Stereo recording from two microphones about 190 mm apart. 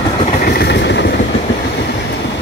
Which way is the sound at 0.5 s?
60° left (ahead or behind).